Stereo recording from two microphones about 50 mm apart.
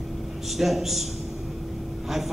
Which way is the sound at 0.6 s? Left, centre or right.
Centre.